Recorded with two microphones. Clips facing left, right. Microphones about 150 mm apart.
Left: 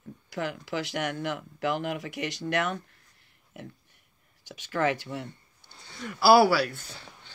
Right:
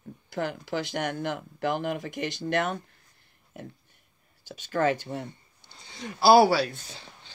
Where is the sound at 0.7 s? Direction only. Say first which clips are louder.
Right 1 dB; 35° right (ahead or behind).